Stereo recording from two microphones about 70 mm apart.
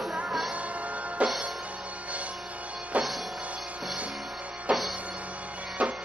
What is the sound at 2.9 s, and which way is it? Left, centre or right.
Music, centre.